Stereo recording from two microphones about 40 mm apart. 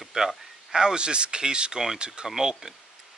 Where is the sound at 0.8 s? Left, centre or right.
Right.